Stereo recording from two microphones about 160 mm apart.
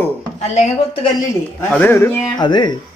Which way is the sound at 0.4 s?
45° left (ahead or behind).